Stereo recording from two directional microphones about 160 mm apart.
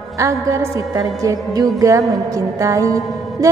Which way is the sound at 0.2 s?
20° right (ahead or behind).